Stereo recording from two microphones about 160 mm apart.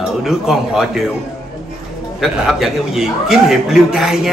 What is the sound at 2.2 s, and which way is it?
Speech, 5° right (ahead or behind).